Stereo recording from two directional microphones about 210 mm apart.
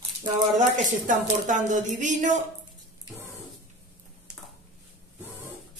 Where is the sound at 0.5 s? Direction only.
35° right (ahead or behind).